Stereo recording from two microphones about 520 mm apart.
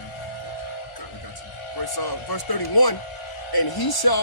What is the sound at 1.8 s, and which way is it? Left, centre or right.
A man's voice, left.